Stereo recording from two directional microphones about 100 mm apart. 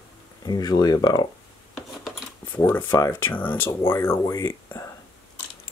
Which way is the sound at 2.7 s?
20° left (ahead or behind).